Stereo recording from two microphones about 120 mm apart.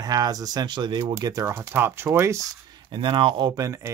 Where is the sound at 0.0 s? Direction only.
35° right (ahead or behind).